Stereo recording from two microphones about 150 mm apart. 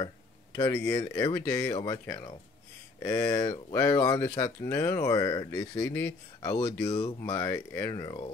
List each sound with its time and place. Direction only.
0.6 s speech: 20° left (ahead or behind)
6.9 s speech: 40° left (ahead or behind)
7.2 s speech: 20° left (ahead or behind)
7.9 s speech: 30° left (ahead or behind)